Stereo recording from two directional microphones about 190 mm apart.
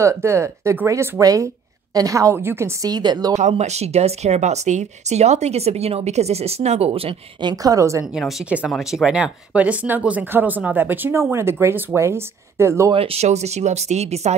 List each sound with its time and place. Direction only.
0.0 s speech: 15° right (ahead or behind)
3.3 s speech: 40° right (ahead or behind); by 8.1 s 15° right (ahead or behind)
8.1 s speech: centre (ahead or behind)
12.9 s speech: 30° right (ahead or behind)